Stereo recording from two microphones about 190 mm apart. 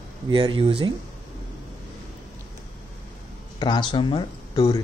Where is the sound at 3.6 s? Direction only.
25° left (ahead or behind).